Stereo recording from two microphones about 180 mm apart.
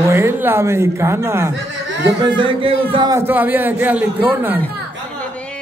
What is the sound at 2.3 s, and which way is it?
Speech, 25° right (ahead or behind).